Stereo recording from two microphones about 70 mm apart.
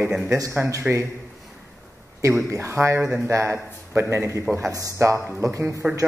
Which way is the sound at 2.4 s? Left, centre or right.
Right.